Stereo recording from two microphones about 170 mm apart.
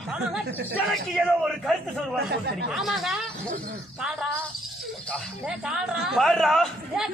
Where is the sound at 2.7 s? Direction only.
Centre (ahead or behind).